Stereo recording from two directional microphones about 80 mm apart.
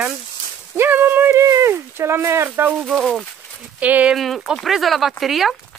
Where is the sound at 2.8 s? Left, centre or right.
Centre.